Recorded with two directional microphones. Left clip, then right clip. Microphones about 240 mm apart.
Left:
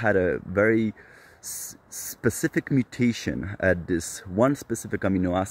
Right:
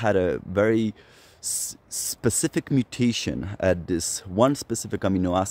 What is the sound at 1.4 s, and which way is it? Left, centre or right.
Speech, right.